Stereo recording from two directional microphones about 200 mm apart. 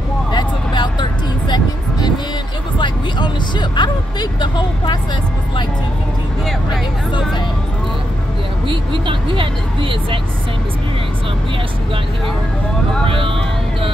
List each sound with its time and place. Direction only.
0.3 s vehicle: 20° left (ahead or behind)
1.5 s music: 20° left (ahead or behind)
2.8 s speech: 20° left (ahead or behind)
8.6 s speech: 25° right (ahead or behind)
13.0 s speech: 25° right (ahead or behind)